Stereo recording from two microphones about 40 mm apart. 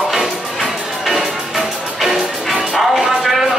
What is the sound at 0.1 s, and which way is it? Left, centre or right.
Music, centre.